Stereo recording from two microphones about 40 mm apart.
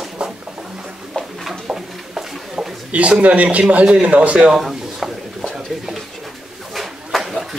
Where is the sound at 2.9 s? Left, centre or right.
Right.